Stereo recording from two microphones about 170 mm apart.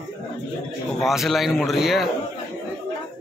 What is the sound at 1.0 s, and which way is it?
A man's voice, centre (ahead or behind).